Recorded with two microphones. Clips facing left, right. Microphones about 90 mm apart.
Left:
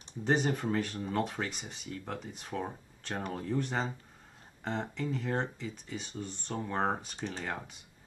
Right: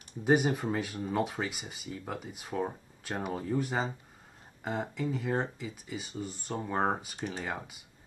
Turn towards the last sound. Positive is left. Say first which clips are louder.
# right 1 dB
turn(degrees=-5)  # may be behind; listen again after turning